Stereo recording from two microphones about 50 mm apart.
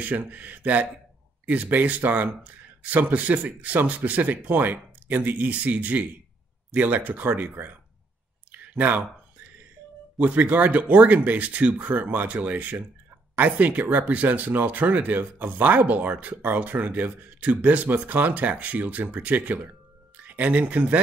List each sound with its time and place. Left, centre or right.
0.0 s speech: right
8.5 s a sound: right
10.1 s speech: right